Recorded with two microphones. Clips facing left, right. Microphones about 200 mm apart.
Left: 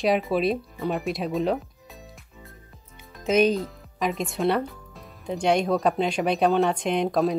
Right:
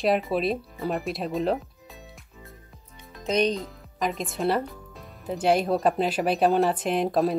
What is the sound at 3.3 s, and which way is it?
Speech, 5° left (ahead or behind).